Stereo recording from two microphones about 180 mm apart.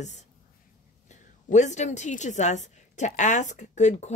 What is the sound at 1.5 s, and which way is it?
A woman's voice, 40° left (ahead or behind).